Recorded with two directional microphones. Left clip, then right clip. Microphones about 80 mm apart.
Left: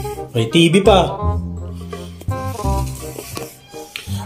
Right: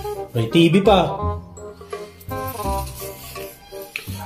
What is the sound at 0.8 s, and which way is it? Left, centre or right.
Speech, left.